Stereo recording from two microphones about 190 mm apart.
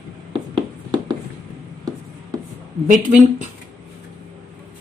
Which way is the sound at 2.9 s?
40° right (ahead or behind).